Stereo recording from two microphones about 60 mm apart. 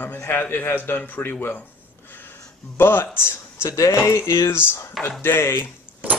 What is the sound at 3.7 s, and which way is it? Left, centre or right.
Speech, left.